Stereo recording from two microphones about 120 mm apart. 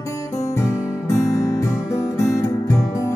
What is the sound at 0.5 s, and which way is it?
Music, 25° left (ahead or behind).